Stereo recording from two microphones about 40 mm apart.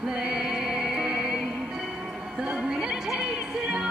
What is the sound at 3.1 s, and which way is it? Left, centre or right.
Music, centre.